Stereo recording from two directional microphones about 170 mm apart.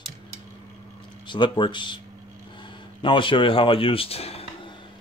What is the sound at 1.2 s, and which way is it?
Speech, 30° left (ahead or behind).